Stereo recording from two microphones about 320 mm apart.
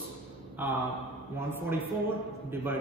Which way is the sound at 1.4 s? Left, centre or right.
Centre.